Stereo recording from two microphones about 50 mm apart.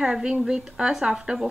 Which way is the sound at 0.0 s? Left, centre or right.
Centre.